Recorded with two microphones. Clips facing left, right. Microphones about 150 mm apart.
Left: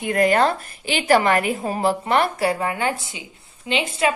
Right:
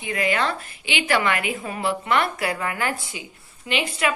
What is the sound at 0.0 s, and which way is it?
A woman's voice, 50° left (ahead or behind).